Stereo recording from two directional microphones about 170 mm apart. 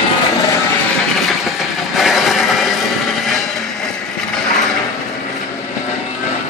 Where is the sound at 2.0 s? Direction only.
Centre (ahead or behind).